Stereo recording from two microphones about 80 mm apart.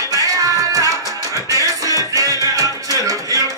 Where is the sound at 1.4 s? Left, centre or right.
Right.